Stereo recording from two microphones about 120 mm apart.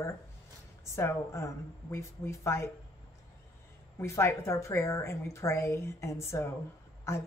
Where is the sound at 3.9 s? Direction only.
20° left (ahead or behind).